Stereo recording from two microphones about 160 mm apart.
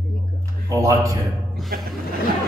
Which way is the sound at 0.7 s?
20° right (ahead or behind).